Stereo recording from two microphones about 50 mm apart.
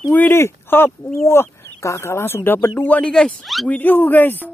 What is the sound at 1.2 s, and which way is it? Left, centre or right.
Speech, left.